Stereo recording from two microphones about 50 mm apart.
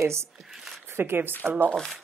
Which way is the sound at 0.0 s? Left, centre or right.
Right.